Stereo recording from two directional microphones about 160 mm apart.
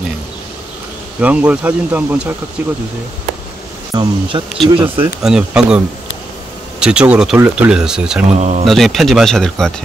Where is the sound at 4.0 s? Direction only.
30° right (ahead or behind).